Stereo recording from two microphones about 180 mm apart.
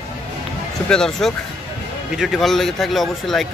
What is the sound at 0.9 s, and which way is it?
Speech, 5° left (ahead or behind).